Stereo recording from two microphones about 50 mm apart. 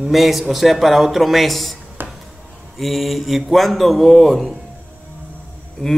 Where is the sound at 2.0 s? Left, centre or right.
Right.